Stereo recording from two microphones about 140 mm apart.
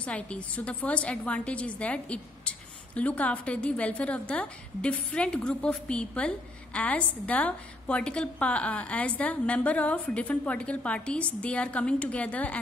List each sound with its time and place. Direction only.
0.0 s a woman's voice: 10° left (ahead or behind)